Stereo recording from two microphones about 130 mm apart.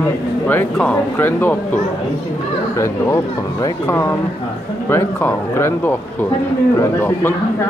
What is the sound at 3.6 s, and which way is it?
Speech, 20° left (ahead or behind).